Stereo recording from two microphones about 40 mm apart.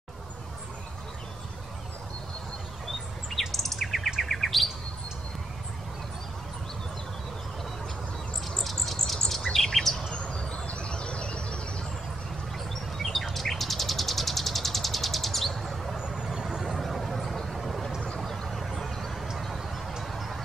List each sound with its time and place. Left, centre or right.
3.3 s bird: centre
4.2 s chirp: centre
8.5 s bird: centre
10.1 s a sound: left
12.9 s bird: centre
16.3 s vehicle: centre
16.7 s vehicle: centre
19.3 s a sound: centre
20.1 s music: centre